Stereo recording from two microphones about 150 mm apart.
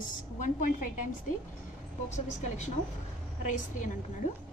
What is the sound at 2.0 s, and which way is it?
A woman's voice, 50° left (ahead or behind).